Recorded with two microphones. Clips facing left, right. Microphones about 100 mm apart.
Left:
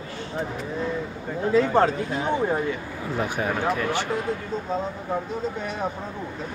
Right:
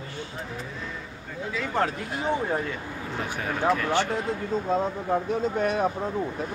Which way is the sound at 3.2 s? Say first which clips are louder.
Left 5 dB; 15° left (ahead or behind).